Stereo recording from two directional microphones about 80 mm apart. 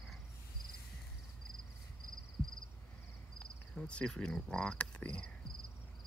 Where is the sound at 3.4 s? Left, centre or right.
Centre.